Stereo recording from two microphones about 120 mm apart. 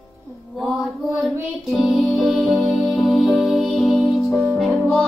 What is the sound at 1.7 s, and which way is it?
Music, centre (ahead or behind).